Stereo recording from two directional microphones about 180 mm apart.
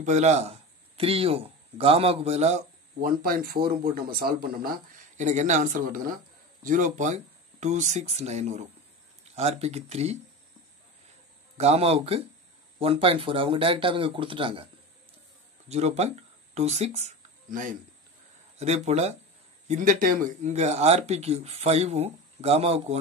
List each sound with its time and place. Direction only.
0.0 s speech: 40° right (ahead or behind)
3.0 s speech: 55° right (ahead or behind); by 10.1 s 35° right (ahead or behind)
11.5 s speech: 35° right (ahead or behind)
15.7 s speech: 35° right (ahead or behind)